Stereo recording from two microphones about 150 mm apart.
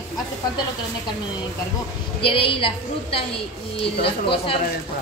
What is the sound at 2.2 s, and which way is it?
A woman's voice, 35° left (ahead or behind).